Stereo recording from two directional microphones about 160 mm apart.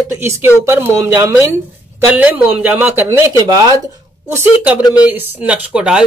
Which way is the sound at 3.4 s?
20° right (ahead or behind).